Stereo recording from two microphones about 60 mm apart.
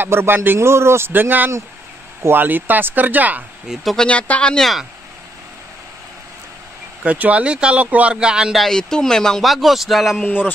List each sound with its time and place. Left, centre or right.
0.0 s speech: right
3.6 s speech: centre
4.1 s speech: left
4.6 s speech: centre
7.0 s speech: right
8.5 s speech: centre